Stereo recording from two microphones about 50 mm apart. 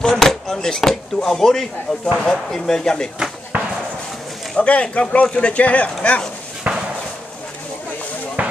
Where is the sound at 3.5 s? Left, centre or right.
Right.